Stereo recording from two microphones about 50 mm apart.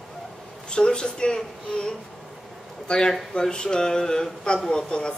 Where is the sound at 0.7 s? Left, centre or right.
Centre.